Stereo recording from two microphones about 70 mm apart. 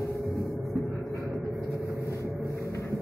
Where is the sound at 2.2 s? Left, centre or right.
Left.